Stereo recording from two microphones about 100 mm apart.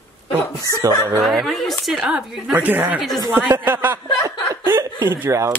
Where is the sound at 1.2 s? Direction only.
Centre (ahead or behind); by 5.5 s 25° right (ahead or behind).